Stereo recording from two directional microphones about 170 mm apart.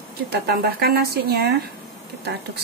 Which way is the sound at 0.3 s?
70° right (ahead or behind).